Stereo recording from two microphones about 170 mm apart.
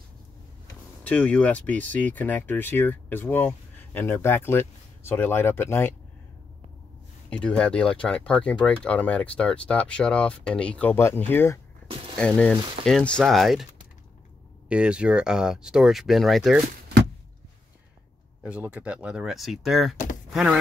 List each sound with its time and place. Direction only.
1.0 s speech: 10° left (ahead or behind)
7.2 s speech: 5° left (ahead or behind)
11.9 s a sound: 30° right (ahead or behind)
12.2 s speech: 5° left (ahead or behind)
14.7 s speech: 5° right (ahead or behind)
18.4 s speech: 10° right (ahead or behind)
20.2 s door: centre (ahead or behind)